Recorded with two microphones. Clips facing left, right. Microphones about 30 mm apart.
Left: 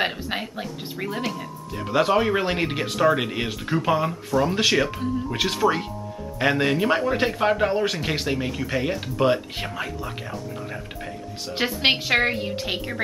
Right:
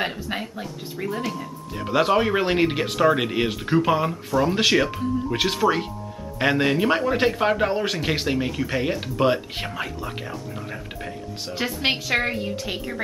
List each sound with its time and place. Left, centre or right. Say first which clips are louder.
0.0 s a woman's voice: left 1 dB; centre
1.9 s speech: even; centre
11.5 s a woman's voice: left 3 dB; left